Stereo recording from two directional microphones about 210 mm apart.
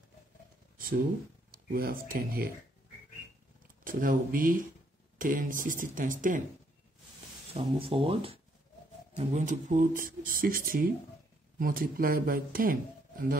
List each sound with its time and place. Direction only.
0.7 s a sound: 40° right (ahead or behind)
1.7 s speech: 45° right (ahead or behind)
3.8 s speech: 40° right (ahead or behind)
7.5 s speech: 25° right (ahead or behind); by 13.4 s 40° right (ahead or behind)